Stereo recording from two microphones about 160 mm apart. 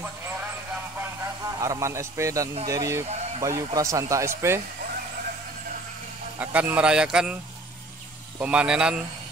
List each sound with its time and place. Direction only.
1.6 s speech: 20° right (ahead or behind)
6.4 s speech: 10° right (ahead or behind)
8.4 s speech: 5° right (ahead or behind)